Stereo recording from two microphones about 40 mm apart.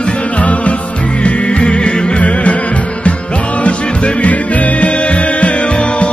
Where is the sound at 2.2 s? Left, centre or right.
Left.